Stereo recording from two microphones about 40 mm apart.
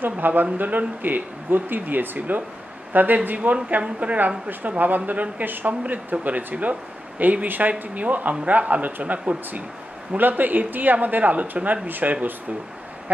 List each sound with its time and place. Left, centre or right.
0.0 s speech: right
3.3 s speech: right
4.5 s speech: right
10.1 s speech: right